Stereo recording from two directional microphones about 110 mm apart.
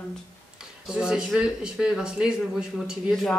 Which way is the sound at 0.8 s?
5° right (ahead or behind).